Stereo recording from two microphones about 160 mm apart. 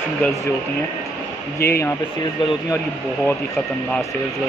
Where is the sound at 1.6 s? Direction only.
75° left (ahead or behind).